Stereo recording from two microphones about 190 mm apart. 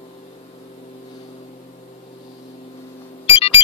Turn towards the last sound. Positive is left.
turn(degrees=30)  # may be behind; listen again after turning